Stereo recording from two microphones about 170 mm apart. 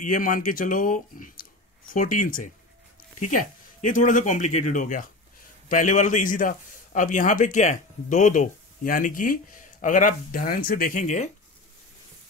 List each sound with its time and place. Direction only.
0.0 s a man's voice: 55° left (ahead or behind)